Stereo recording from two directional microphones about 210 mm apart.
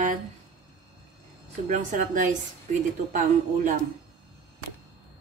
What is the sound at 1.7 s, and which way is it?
Speech, 40° right (ahead or behind).